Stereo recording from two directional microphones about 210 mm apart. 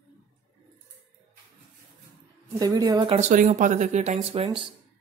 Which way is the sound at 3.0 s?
35° right (ahead or behind).